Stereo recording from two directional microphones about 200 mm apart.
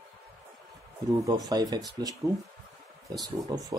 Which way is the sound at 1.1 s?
15° right (ahead or behind).